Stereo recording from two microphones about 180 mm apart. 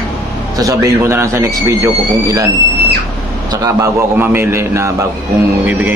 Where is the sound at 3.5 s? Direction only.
15° right (ahead or behind).